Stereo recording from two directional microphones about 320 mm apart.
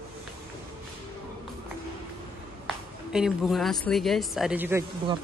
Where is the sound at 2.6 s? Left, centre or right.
Centre.